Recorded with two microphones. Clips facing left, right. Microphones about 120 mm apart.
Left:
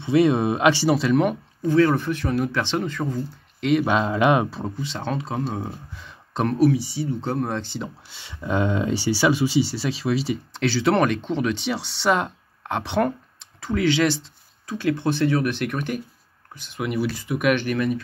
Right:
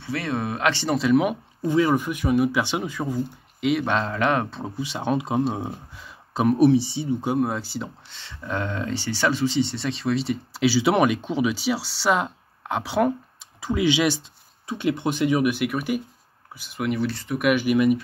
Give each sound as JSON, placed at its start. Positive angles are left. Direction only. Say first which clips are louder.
{"t": 0.0, "sound": "speech", "louder": "left 9 dB", "side_deg": 15}
{"t": 0.9, "sound": "speech", "louder": "even", "side_deg": 0}
{"t": 4.6, "sound": "speech", "louder": "even", "side_deg": -5}
{"t": 5.9, "sound": "a sound", "louder": "even", "side_deg": -5}
{"t": 6.6, "sound": "speech", "louder": "right 1 dB", "side_deg": -25}
{"t": 7.1, "sound": "speech", "louder": "right 2 dB", "side_deg": -10}
{"t": 8.1, "sound": "speech", "louder": "left 6 dB", "side_deg": 15}
{"t": 13.6, "sound": "speech", "louder": "left 1 dB", "side_deg": -15}